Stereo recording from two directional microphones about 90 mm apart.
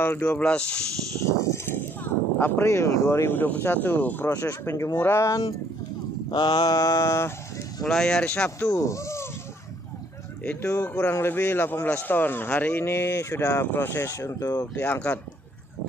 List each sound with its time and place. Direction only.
0.2 s speech: 10° left (ahead or behind)
1.2 s speech: 30° left (ahead or behind)
4.3 s speech: 40° left (ahead or behind)
6.3 s mantra: 60° left (ahead or behind)
6.7 s speech: 40° left (ahead or behind)
7.8 s speech: 5° left (ahead or behind)
8.5 s speech: 35° left (ahead or behind)
10.4 s speech: 15° left (ahead or behind); by 13.7 s 40° left (ahead or behind)
13.7 s speech: 25° left (ahead or behind)
14.6 s speech: 25° left (ahead or behind)